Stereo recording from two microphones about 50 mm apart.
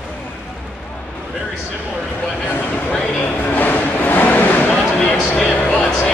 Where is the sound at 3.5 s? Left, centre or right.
Left.